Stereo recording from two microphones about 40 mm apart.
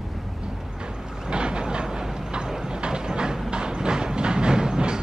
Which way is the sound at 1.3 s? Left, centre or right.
Right.